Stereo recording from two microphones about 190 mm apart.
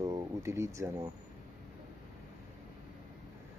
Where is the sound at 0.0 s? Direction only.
15° right (ahead or behind).